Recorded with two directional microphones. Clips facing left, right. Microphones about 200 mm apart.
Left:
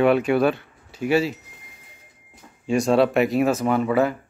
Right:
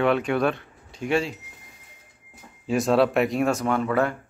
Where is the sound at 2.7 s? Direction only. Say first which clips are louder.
Left 2 dB; centre (ahead or behind).